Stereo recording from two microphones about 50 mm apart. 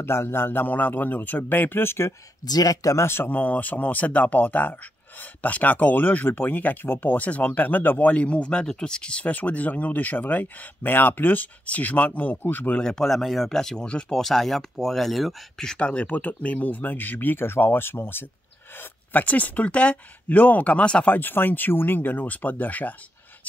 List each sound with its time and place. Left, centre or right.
0.0 s speech: left
0.5 s speech: left
8.1 s speech: left
9.2 s speech: left
12.7 s speech: centre
14.2 s speech: centre
15.6 s speech: centre; by 18.2 s left
19.1 s speech: left
21.1 s speech: left